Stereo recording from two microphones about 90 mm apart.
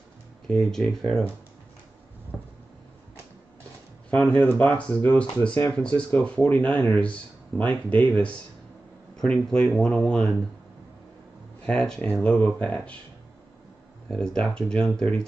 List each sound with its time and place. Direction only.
0.5 s speech: 5° left (ahead or behind)
2.3 s a sound: 5° left (ahead or behind)
4.5 s speech: 20° left (ahead or behind)
11.6 s speech: 5° left (ahead or behind)
14.1 s speech: 5° left (ahead or behind)